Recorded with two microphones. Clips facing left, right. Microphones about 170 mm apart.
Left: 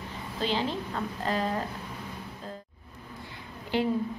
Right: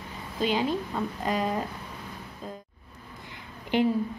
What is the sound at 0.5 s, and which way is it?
A woman's voice, 10° right (ahead or behind).